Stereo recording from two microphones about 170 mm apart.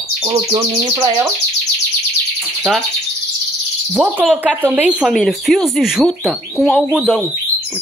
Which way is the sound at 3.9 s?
10° right (ahead or behind).